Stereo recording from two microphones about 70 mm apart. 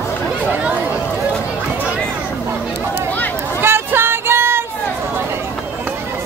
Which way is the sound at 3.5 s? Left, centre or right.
Right.